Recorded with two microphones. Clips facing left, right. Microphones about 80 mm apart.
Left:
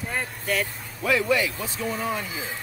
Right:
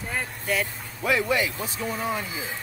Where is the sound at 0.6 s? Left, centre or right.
Centre.